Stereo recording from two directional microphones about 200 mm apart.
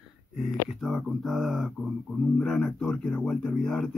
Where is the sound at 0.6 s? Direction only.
Centre (ahead or behind).